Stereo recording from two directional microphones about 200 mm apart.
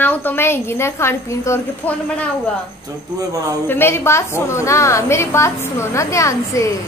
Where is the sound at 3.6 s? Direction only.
10° left (ahead or behind).